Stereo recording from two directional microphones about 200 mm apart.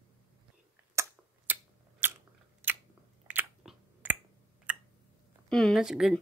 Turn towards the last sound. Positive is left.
turn(degrees=-5)  # may be behind; listen again after turning